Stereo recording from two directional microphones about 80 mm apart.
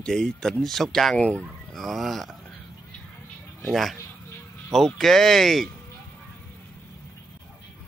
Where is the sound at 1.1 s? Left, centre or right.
Centre.